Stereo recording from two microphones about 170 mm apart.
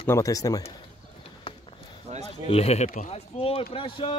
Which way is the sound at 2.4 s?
40° left (ahead or behind).